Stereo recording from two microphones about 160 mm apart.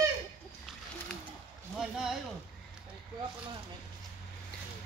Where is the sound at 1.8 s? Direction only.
5° right (ahead or behind).